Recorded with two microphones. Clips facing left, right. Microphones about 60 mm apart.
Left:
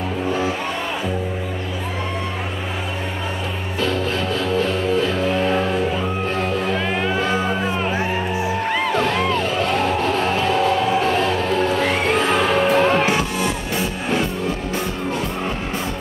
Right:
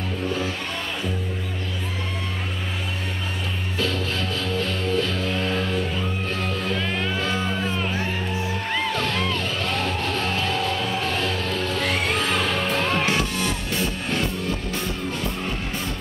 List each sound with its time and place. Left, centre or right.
3.8 s music: centre